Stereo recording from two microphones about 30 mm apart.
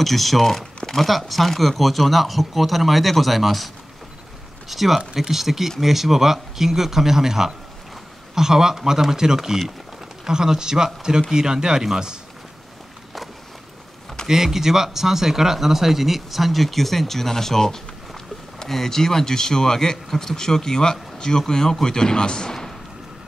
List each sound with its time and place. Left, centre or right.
0.0 s speech: centre
14.2 s speech: centre; by 22.5 s left
22.5 s a sound: centre